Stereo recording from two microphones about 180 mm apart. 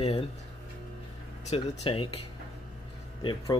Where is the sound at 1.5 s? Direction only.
35° left (ahead or behind).